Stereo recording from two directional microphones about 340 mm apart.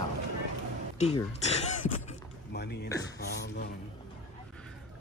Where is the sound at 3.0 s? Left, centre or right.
Left.